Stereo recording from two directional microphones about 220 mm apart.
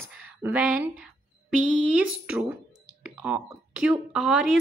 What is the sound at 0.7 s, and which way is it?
Speech, 5° right (ahead or behind).